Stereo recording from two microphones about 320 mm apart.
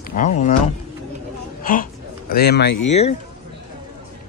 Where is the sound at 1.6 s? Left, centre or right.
Left.